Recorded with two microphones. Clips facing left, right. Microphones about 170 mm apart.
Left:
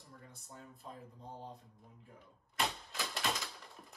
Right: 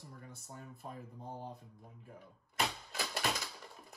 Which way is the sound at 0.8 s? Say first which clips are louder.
Right 3 dB; 55° right (ahead or behind).